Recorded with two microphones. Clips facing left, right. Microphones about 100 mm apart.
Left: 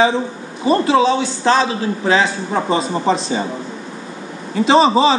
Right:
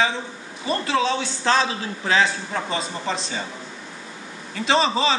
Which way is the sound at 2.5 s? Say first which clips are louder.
Left 9 dB; 25° left (ahead or behind).